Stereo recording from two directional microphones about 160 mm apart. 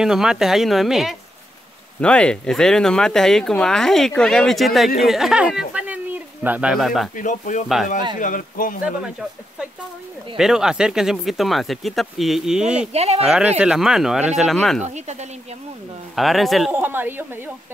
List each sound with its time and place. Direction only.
0.0 s speech: 5° right (ahead or behind)
7.2 s speech: 55° left (ahead or behind)
7.6 s speech: centre (ahead or behind)
8.2 s speech: 55° left (ahead or behind)
10.3 s speech: 5° right (ahead or behind)
12.9 s speech: 40° right (ahead or behind)
13.6 s speech: 5° right (ahead or behind)
14.9 s speech: 45° right (ahead or behind)
16.2 s speech: centre (ahead or behind)
16.7 s a woman's voice: 10° right (ahead or behind)